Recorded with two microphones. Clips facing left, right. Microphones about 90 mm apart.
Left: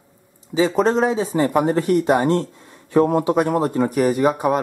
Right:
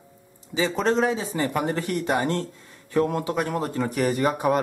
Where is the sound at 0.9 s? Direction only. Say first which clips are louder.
Left 4 dB; 35° left (ahead or behind).